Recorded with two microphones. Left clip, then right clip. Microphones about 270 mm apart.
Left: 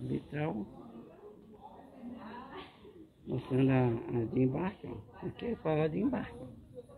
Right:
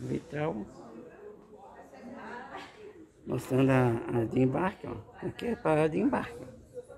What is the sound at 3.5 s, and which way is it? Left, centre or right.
Speech, right.